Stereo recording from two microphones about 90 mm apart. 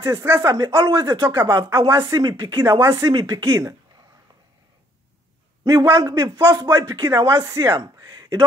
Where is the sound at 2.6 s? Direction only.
30° right (ahead or behind).